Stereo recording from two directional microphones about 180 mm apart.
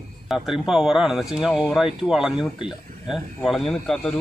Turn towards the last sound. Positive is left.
turn(degrees=5)  # may be behind; listen again after turning